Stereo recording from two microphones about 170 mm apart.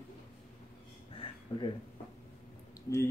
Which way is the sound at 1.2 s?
35° left (ahead or behind).